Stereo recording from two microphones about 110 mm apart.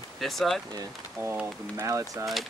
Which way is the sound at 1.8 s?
25° right (ahead or behind).